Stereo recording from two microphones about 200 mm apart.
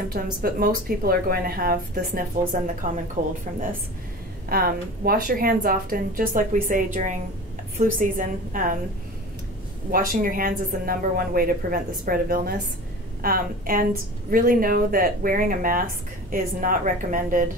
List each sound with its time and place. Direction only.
0.1 s a woman's voice: 50° right (ahead or behind)
4.5 s a woman's voice: 50° right (ahead or behind)
9.8 s speech: 45° right (ahead or behind)